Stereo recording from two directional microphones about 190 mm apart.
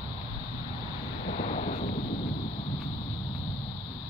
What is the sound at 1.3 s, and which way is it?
Wind noise, 35° left (ahead or behind).